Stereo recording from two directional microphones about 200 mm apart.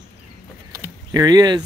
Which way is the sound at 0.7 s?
15° right (ahead or behind).